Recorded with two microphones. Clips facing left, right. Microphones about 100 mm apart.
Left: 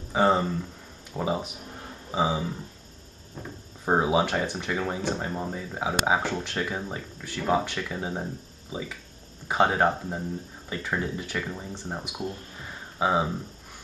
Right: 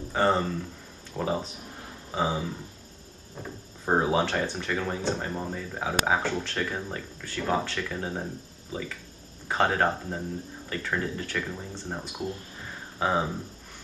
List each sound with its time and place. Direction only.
0.1 s speech: 10° left (ahead or behind)
3.8 s speech: 10° left (ahead or behind)